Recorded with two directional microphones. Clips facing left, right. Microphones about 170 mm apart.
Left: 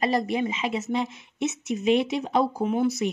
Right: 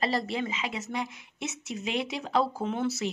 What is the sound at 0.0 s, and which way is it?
A woman's voice, 20° left (ahead or behind).